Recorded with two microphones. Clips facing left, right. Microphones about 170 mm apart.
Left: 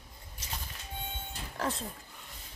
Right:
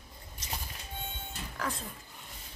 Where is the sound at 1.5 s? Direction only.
30° left (ahead or behind).